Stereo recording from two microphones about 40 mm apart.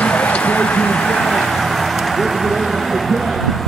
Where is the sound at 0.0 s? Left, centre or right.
Left.